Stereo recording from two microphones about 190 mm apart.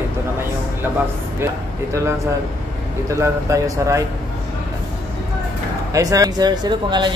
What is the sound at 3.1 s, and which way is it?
Speech, 15° right (ahead or behind).